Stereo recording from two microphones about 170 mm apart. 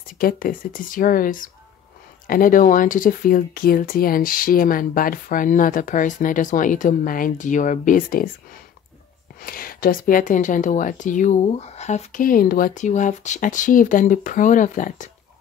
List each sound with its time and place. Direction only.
0.2 s speech: 55° left (ahead or behind)
9.4 s speech: 60° left (ahead or behind)